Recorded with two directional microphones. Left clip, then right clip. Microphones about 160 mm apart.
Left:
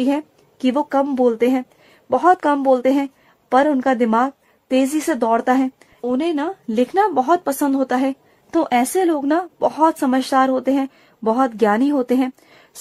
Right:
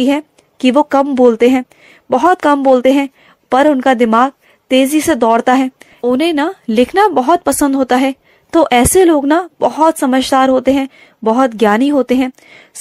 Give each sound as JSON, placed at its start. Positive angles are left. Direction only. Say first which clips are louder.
{"t": 0.0, "sound": "a woman's voice", "louder": "right 6 dB", "side_deg": -20}